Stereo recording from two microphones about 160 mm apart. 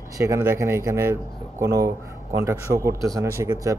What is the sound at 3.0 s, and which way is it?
Speech, 20° right (ahead or behind).